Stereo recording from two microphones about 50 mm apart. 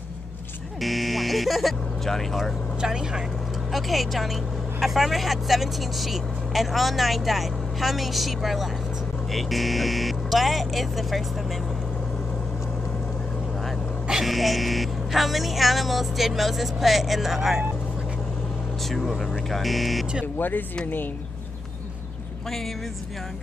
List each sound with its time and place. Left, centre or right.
0.7 s speech: centre
2.8 s speech: centre
3.7 s speech: centre
14.2 s speech: centre
18.9 s speech: centre
20.3 s speech: left